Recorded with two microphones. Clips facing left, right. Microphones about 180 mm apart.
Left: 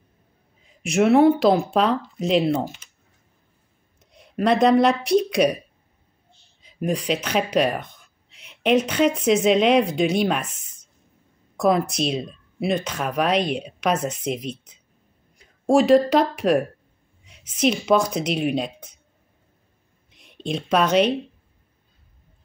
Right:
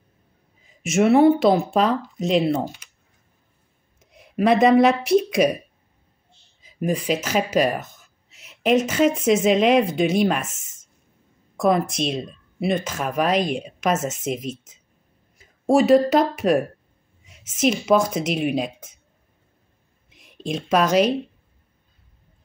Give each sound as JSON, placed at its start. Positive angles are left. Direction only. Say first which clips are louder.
{"t": 0.6, "sound": "speech", "louder": "even", "side_deg": 0}
{"t": 4.1, "sound": "speech", "louder": "right 2 dB", "side_deg": -5}
{"t": 6.6, "sound": "speech", "louder": "right 1 dB", "side_deg": -5}
{"t": 10.6, "sound": "a sound", "louder": "even", "side_deg": -45}
{"t": 11.5, "sound": "a woman's voice", "louder": "even", "side_deg": 0}
{"t": 20.1, "sound": "speech", "louder": "even", "side_deg": 0}